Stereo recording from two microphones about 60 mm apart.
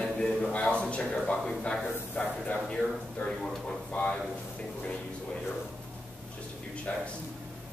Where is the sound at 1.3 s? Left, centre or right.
Centre.